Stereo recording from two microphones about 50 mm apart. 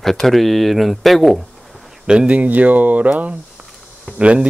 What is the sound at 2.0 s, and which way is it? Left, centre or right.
Speech, centre.